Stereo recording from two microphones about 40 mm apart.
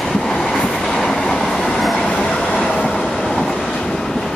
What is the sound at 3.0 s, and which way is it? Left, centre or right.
Vehicle, centre.